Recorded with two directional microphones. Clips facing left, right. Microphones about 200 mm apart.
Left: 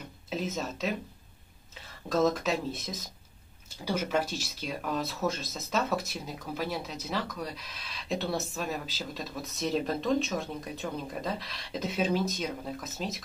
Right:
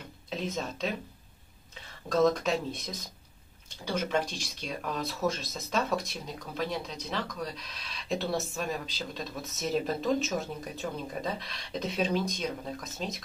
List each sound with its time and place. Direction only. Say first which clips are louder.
0.3 s speech: left 1 dB; 5° left (ahead or behind)
2.0 s speech: right 1 dB; centre (ahead or behind)